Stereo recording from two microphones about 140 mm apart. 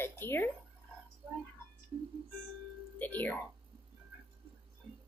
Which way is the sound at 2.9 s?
10° left (ahead or behind).